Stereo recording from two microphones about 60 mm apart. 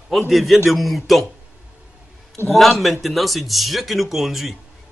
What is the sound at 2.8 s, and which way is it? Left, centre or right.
Speech, centre.